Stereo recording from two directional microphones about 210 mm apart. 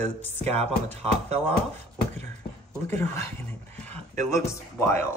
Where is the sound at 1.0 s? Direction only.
30° right (ahead or behind).